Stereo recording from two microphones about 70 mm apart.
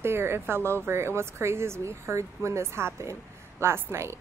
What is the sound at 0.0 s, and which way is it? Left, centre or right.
Speech, right.